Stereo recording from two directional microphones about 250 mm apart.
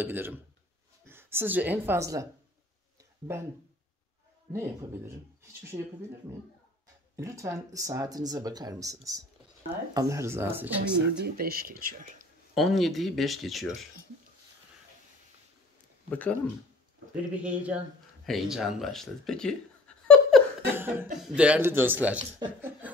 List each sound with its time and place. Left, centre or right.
0.0 s speech: centre
4.5 s speech: centre
11.3 s speech: right
12.5 s speech: centre
16.1 s speech: centre
17.3 s speech: centre
20.1 s a sound: centre
20.6 s cough: centre
21.3 s speech: centre